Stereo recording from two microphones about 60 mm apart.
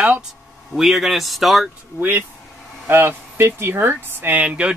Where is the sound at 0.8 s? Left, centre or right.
Centre.